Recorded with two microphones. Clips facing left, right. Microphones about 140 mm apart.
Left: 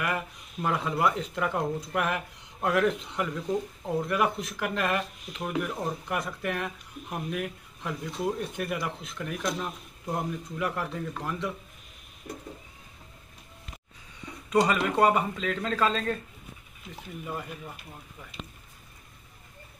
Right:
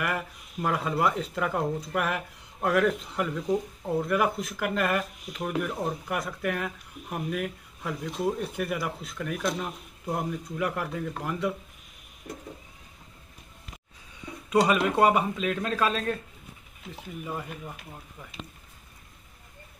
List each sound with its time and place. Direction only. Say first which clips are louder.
0.6 s speech: right 1 dB; 5° right (ahead or behind)
14.5 s speech: right 1 dB; 10° right (ahead or behind)
17.2 s speech: right 1 dB; 10° right (ahead or behind)